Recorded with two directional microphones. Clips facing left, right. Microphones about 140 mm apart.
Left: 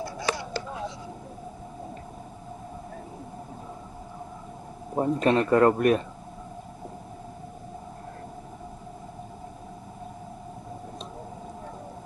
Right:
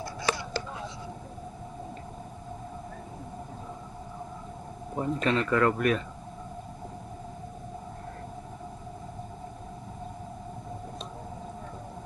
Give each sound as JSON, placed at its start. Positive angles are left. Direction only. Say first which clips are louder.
{"t": 4.9, "sound": "speech", "louder": "left 5 dB", "side_deg": 40}